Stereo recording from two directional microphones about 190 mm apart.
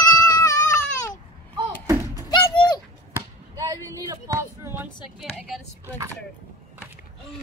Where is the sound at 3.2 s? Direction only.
20° right (ahead or behind).